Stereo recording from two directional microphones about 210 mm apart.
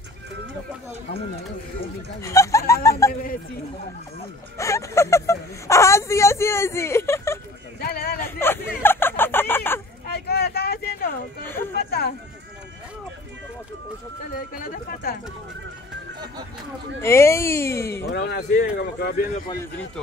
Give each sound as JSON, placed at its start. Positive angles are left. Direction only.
{"t": 2.2, "sound": "speech", "side_deg": 15}
{"t": 4.6, "sound": "speech", "side_deg": 15}
{"t": 7.8, "sound": "a sound", "side_deg": 45}
{"t": 8.8, "sound": "fowl", "side_deg": 10}
{"t": 10.0, "sound": "a sound", "side_deg": 50}
{"t": 14.3, "sound": "speech", "side_deg": 40}
{"t": 17.0, "sound": "speech", "side_deg": 15}
{"t": 18.0, "sound": "speech", "side_deg": 50}
{"t": 19.4, "sound": "speech", "side_deg": 15}